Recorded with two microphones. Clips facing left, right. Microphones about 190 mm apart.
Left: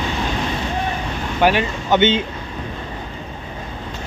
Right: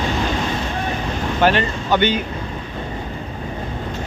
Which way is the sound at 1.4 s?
15° left (ahead or behind).